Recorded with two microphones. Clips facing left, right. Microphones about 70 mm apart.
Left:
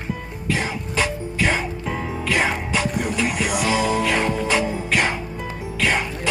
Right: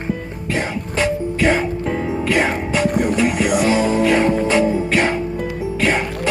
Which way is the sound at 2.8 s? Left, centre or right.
Right.